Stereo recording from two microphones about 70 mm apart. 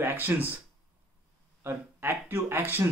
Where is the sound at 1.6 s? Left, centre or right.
Right.